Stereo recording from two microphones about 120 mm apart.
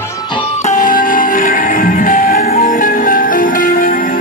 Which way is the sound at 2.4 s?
80° left.